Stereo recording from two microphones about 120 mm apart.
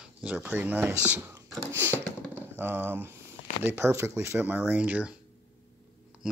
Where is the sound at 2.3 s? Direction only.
15° right (ahead or behind).